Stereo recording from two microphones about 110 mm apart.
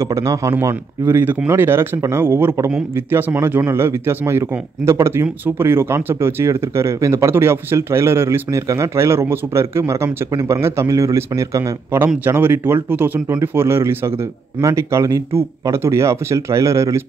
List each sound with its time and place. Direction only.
0.0 s a man's voice: 25° right (ahead or behind)